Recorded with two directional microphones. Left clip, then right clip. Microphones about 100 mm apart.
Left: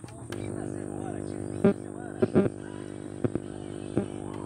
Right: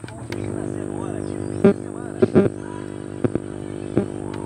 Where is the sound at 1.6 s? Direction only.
Centre (ahead or behind).